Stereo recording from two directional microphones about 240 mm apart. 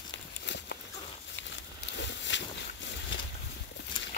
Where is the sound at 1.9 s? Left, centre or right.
Left.